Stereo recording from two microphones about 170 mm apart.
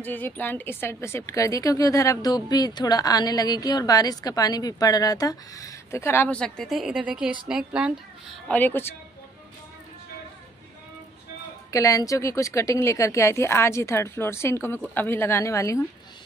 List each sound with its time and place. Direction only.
0.0 s a woman's voice: 10° left (ahead or behind); by 8.4 s 5° right (ahead or behind)
8.5 s a woman's voice: 10° left (ahead or behind)
11.7 s a woman's voice: 20° left (ahead or behind)